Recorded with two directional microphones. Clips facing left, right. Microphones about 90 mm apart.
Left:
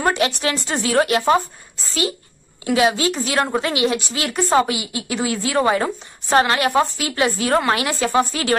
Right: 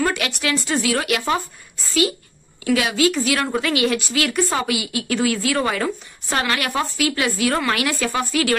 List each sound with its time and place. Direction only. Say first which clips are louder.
0.0 s speech: left 3 dB; 30° left (ahead or behind)
2.6 s a woman's voice: left 1 dB; 30° left (ahead or behind)